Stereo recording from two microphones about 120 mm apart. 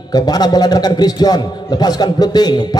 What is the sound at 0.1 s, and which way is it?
A man's voice, 35° left (ahead or behind).